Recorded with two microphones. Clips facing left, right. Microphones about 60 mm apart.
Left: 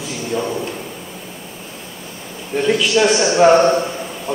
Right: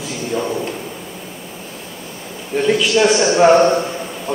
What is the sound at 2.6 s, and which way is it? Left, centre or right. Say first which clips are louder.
Speech: right 1 dB; centre.